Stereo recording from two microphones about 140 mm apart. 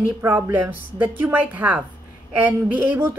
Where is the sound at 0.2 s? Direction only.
15° right (ahead or behind).